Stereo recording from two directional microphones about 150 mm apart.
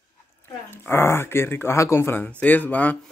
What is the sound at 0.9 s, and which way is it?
Speech, 15° left (ahead or behind).